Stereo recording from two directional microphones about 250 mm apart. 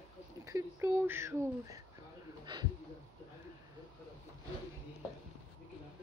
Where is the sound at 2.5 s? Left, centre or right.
Centre.